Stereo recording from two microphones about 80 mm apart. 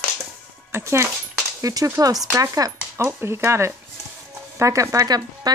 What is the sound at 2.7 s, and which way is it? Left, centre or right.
Speech, right.